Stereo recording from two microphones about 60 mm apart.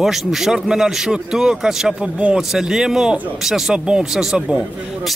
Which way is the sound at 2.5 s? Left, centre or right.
Centre.